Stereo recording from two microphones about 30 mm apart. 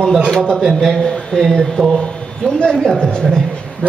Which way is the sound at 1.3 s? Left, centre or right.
Centre.